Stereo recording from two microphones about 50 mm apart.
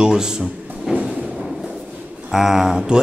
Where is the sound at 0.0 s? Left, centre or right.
Centre.